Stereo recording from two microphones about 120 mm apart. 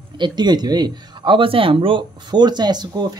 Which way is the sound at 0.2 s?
35° right (ahead or behind).